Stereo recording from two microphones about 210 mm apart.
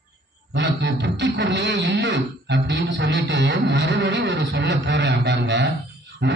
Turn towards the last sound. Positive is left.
turn(degrees=-50)  # may be behind; listen again after turning